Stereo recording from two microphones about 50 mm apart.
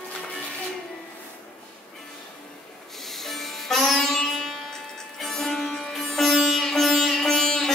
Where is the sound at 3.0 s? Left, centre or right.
Centre.